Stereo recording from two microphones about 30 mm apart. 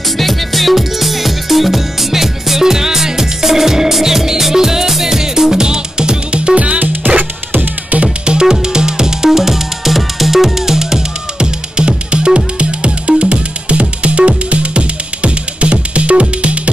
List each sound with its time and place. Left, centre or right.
0.2 s music: centre; by 6.8 s right
7.2 s music: right
8.3 s music: right
11.3 s music: right